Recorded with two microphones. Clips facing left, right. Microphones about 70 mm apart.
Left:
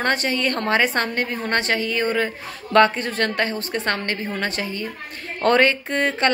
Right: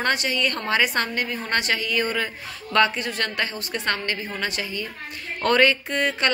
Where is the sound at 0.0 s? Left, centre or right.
Left.